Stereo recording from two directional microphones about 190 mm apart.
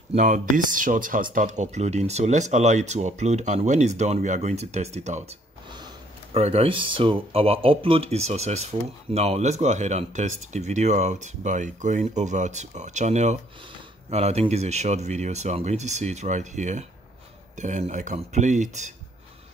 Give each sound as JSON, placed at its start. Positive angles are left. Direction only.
{"t": 0.1, "sound": "speech", "side_deg": -40}
{"t": 6.3, "sound": "speech", "side_deg": -30}